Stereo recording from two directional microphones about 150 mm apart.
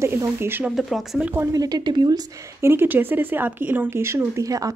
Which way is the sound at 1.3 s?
20° right (ahead or behind).